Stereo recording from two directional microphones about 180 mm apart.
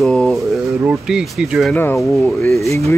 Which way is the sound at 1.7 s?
10° left (ahead or behind).